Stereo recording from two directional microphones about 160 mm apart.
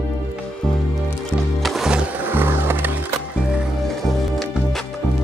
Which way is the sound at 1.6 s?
Centre (ahead or behind).